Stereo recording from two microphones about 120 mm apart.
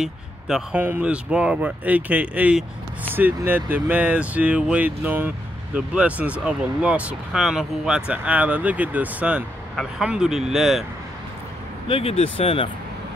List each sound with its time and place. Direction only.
0.0 s speech: 5° right (ahead or behind)
0.7 s speech: 15° right (ahead or behind)
11.9 s speech: 55° left (ahead or behind)